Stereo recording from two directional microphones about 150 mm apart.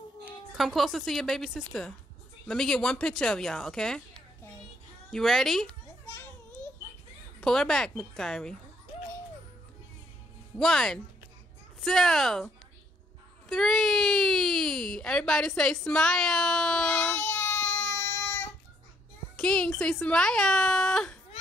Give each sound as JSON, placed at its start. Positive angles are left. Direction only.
{"t": 0.6, "sound": "speech", "side_deg": 0}
{"t": 6.0, "sound": "children playing", "side_deg": 20}
{"t": 7.3, "sound": "speech", "side_deg": 5}
{"t": 10.6, "sound": "speech", "side_deg": 5}
{"t": 13.5, "sound": "a sound", "side_deg": 0}
{"t": 19.3, "sound": "speech", "side_deg": 5}